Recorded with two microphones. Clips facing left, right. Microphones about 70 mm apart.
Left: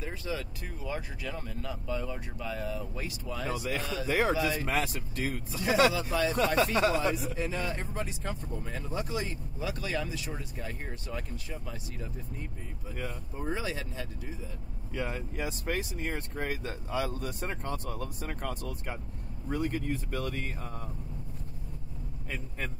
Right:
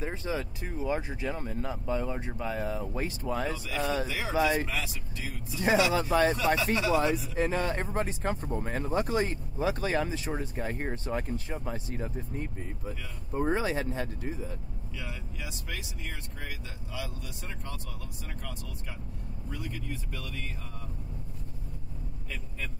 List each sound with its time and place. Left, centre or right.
0.0 s speech: right
4.1 s speech: left
4.4 s speech: right
4.6 s speech: left
5.9 s speech: right
6.3 s speech: left
7.3 s speech: right
15.0 s speech: left